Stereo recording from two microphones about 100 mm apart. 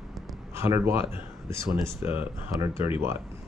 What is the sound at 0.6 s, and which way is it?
Speech, 25° right (ahead or behind).